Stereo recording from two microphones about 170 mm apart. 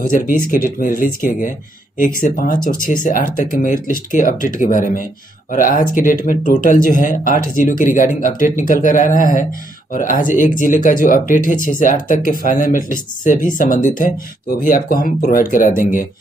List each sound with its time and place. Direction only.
0.0 s speech: 55° left (ahead or behind)